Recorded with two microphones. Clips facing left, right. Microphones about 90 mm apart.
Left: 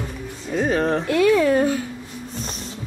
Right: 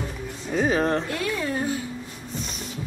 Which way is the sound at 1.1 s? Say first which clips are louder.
Left 11 dB; 80° left.